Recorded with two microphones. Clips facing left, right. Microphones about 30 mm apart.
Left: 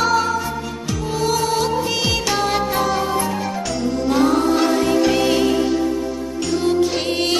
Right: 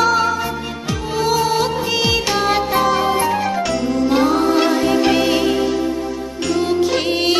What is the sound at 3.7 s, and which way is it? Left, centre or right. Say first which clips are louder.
Music: even; centre.